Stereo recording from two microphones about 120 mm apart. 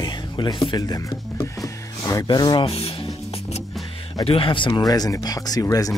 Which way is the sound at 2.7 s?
55° left (ahead or behind).